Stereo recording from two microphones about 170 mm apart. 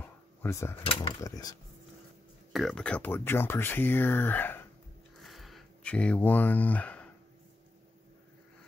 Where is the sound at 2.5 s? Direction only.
Centre (ahead or behind).